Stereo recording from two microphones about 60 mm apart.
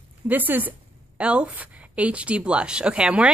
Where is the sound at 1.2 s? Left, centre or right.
Centre.